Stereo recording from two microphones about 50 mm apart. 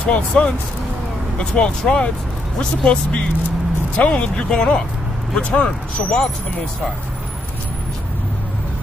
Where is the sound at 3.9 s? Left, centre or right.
Left.